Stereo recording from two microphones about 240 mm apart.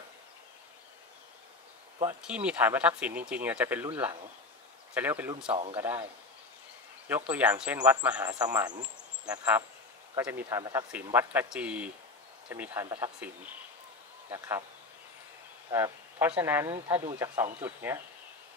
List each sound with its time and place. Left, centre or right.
2.2 s speech: centre
5.5 s speech: right
5.8 s speech: centre
7.1 s speech: centre
14.3 s speech: centre
15.7 s speech: centre